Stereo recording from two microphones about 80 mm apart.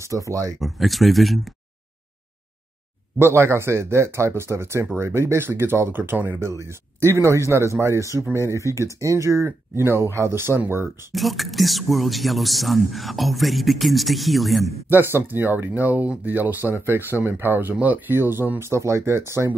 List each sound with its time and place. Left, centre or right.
0.0 s speech: right
0.6 s speech: centre
3.2 s speech: right
6.4 s speech: right
11.1 s speech: centre
14.9 s speech: right